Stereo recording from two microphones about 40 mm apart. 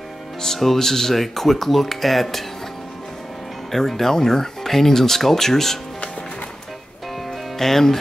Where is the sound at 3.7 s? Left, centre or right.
Centre.